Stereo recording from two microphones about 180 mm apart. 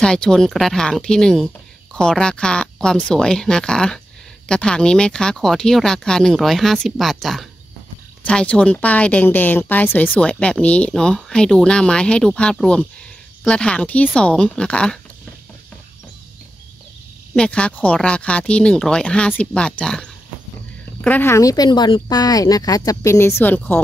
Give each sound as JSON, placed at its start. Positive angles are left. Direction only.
{"t": 0.0, "sound": "speech", "side_deg": 5}
{"t": 17.4, "sound": "speech", "side_deg": 5}